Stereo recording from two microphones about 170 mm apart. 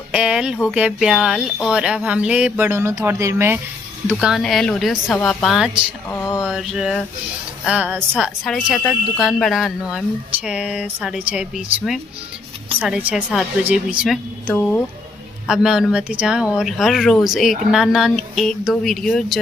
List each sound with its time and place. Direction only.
0.1 s speech: 5° right (ahead or behind)
6.0 s a sound: 15° left (ahead or behind)
6.4 s speech: 5° right (ahead or behind)